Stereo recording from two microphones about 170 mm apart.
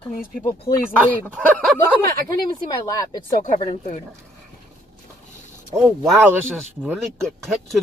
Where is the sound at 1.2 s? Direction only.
10° left (ahead or behind).